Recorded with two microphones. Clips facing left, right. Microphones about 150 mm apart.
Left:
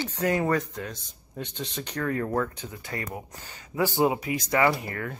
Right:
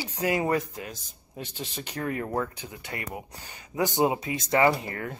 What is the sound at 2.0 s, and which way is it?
Speech, 20° right (ahead or behind).